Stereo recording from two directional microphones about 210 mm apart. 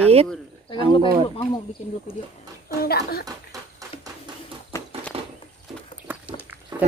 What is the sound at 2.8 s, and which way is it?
Speech, 45° left (ahead or behind).